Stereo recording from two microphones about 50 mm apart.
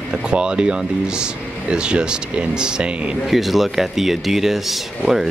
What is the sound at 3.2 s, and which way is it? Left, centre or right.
Speech, centre.